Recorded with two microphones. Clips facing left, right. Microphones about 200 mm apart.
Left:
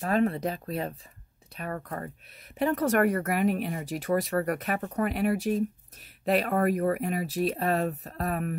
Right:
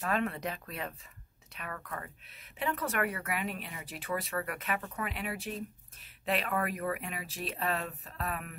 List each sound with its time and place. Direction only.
0.0 s speech: 30° left (ahead or behind)